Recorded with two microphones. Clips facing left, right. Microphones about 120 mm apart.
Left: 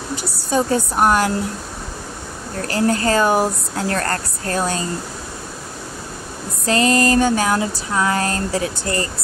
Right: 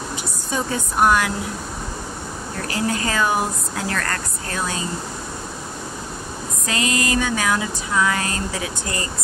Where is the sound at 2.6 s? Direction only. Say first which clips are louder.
Left 6 dB; 45° left (ahead or behind).